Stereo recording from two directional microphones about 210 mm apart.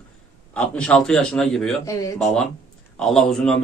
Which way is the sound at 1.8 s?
15° left (ahead or behind).